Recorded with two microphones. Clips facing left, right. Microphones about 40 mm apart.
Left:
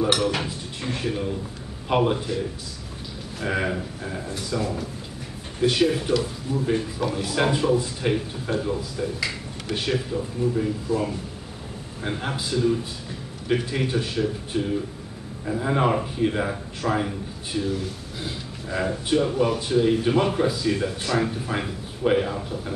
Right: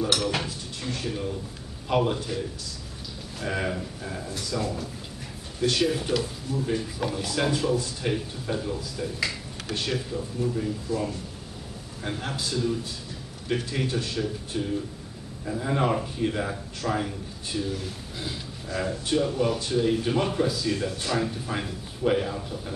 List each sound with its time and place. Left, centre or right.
0.0 s a man's voice: centre
3.3 s speech: centre
7.0 s speech: centre
7.2 s a man's voice: left